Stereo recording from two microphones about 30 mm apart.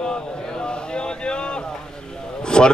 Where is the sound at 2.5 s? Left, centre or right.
Left.